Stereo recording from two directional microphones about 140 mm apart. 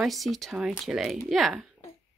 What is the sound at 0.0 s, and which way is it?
Speech, centre (ahead or behind).